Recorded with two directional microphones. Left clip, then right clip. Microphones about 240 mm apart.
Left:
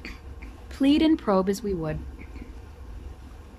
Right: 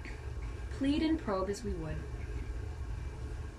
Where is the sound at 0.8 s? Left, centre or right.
Left.